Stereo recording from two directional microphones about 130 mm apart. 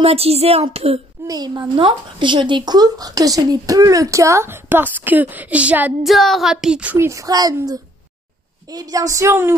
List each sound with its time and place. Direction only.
0.0 s speech: 50° right (ahead or behind)
1.2 s speech: 30° right (ahead or behind); by 5.9 s 10° right (ahead or behind)
6.0 s child singing: centre (ahead or behind)
7.1 s speech: 25° right (ahead or behind)